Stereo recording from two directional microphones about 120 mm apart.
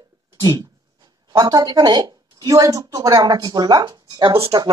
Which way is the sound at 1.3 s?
30° right (ahead or behind).